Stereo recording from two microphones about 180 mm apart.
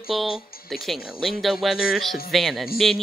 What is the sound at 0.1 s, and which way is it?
Speech, centre (ahead or behind).